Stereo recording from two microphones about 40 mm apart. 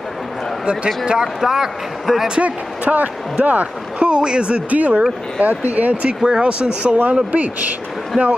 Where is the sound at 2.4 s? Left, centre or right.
Right.